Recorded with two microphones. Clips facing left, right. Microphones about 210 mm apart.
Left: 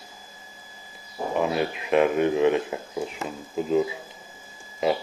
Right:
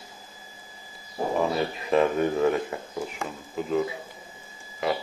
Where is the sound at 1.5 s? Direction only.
5° left (ahead or behind).